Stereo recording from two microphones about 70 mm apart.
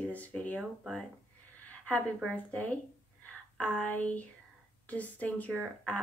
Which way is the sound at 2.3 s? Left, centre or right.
Centre.